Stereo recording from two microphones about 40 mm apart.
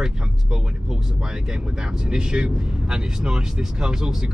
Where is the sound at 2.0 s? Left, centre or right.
Centre.